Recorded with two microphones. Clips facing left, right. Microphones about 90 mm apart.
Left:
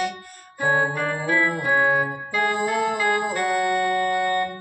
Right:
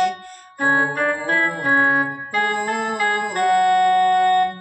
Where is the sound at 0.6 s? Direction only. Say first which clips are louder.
Right 3 dB; 55° right (ahead or behind).